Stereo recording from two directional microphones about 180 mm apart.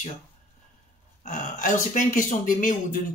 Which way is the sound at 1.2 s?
45° left (ahead or behind).